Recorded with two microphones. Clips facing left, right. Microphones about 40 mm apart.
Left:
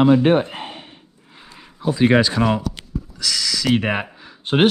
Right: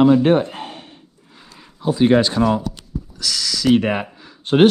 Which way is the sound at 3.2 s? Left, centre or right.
Centre.